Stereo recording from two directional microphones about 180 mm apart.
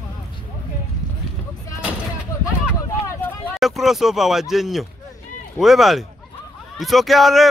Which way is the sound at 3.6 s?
Centre (ahead or behind).